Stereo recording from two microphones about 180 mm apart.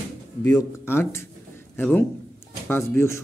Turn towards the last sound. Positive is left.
turn(degrees=15)  # may be behind; listen again after turning